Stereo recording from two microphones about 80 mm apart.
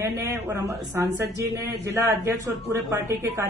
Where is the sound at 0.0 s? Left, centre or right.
Right.